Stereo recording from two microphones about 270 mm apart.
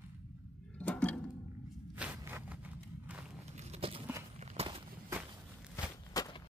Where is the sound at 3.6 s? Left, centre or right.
Right.